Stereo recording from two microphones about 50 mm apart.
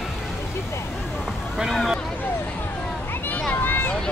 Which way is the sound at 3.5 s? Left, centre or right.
Left.